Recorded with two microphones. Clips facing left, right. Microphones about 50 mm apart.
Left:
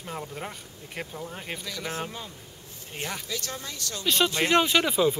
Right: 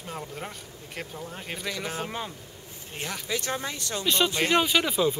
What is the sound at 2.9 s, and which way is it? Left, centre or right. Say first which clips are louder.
Speech: left 1 dB; centre.